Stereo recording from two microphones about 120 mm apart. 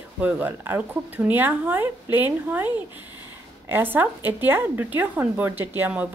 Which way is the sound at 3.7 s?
15° right (ahead or behind).